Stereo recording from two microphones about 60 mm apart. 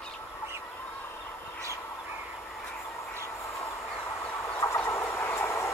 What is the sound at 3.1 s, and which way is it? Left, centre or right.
Train, left.